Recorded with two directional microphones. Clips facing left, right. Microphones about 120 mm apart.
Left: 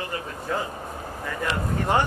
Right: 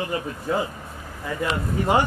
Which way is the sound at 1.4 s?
10° right (ahead or behind).